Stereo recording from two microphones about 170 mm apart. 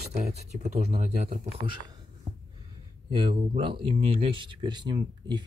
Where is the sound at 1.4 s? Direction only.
30° right (ahead or behind).